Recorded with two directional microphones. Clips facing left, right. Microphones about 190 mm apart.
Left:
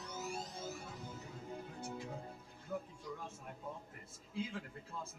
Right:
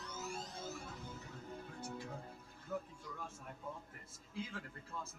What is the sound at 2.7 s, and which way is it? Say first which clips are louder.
Music: even; 15° left (ahead or behind).